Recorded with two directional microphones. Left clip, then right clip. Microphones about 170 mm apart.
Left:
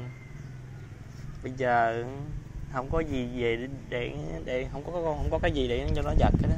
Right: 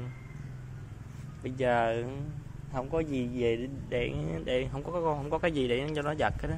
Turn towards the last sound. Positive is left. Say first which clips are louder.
# left 2 dB
turn(degrees=-20)  # may be behind; listen again after turning